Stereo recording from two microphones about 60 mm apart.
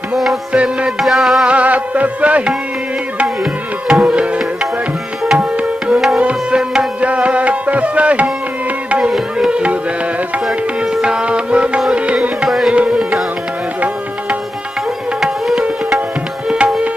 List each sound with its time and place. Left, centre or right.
0.1 s music: centre
0.5 s music: centre
1.0 s music: centre
1.5 s music: right
3.8 s music: centre
5.9 s music: centre; by 8.3 s right
9.5 s music: centre
11.0 s music: centre
12.4 s music: centre
12.7 s music: right
15.1 s music: centre
16.4 s tabla: centre